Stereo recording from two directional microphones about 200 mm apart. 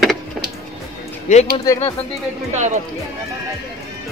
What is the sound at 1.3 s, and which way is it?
Speech, 35° left (ahead or behind).